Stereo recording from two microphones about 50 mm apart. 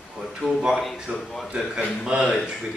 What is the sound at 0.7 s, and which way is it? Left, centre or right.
Speech, centre.